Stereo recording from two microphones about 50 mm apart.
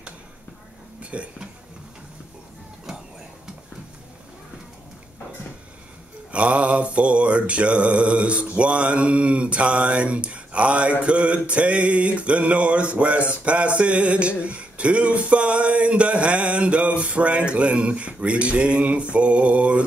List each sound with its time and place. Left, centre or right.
1.1 s mantra: right
6.3 s mantra: right